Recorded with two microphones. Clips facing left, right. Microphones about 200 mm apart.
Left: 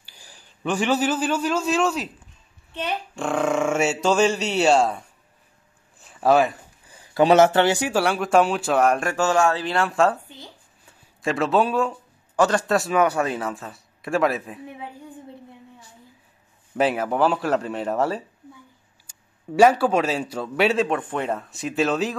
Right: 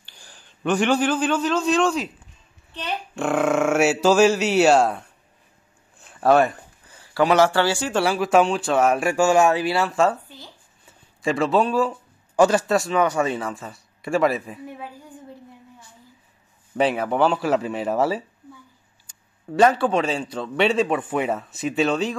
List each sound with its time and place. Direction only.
0.0 s a man's voice: 5° left (ahead or behind)
3.2 s a man's voice: 5° right (ahead or behind)
5.9 s a sound: centre (ahead or behind)
6.9 s a sound: 15° left (ahead or behind)
7.2 s speech: 20° left (ahead or behind)
7.9 s a man's voice: centre (ahead or behind)
16.7 s a man's voice: centre (ahead or behind)
19.0 s a man's voice: 10° left (ahead or behind)